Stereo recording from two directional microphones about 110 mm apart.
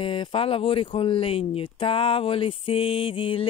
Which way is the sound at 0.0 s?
50° left (ahead or behind).